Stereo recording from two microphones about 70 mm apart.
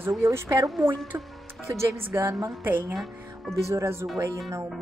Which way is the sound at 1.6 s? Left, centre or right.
Right.